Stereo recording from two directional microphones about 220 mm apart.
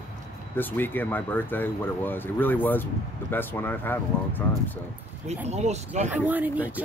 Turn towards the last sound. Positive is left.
turn(degrees=-5)  # may be behind; listen again after turning